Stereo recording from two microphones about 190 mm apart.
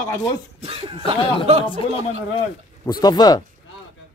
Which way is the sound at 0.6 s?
30° right (ahead or behind).